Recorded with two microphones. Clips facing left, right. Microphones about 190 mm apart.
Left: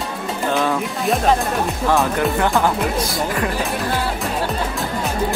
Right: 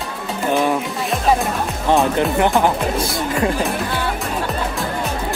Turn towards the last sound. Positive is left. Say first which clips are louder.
# right 2 dB
turn(degrees=-20)  # may be behind; listen again after turning